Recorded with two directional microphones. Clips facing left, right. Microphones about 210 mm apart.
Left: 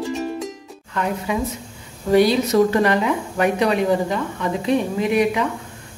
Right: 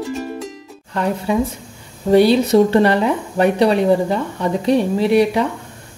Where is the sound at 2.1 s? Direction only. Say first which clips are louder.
Right 4 dB; 30° right (ahead or behind).